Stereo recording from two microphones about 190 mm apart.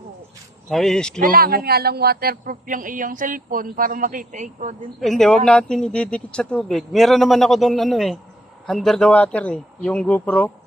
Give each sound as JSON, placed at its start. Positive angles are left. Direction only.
{"t": 0.7, "sound": "a man's voice", "side_deg": 0}
{"t": 1.2, "sound": "a man's voice", "side_deg": -50}
{"t": 5.0, "sound": "a man's voice", "side_deg": 0}